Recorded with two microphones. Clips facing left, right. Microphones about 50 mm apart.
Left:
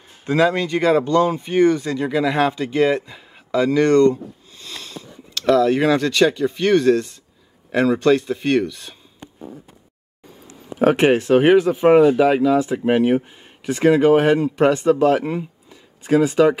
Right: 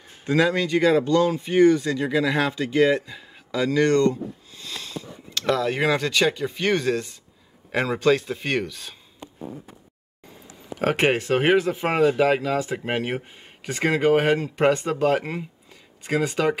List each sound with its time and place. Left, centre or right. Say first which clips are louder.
0.2 s speech: left 3 dB; left
5.6 s speech: left 6 dB; centre
8.1 s speech: left 5 dB; centre
11.0 s speech: left 5 dB; centre